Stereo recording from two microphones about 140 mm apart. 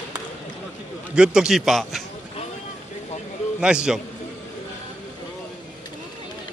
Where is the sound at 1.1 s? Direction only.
5° right (ahead or behind).